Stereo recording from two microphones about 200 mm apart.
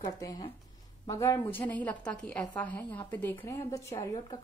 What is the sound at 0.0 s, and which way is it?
A woman's voice, 20° left (ahead or behind).